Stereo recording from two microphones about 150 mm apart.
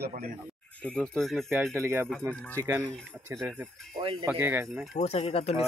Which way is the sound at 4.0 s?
35° right (ahead or behind).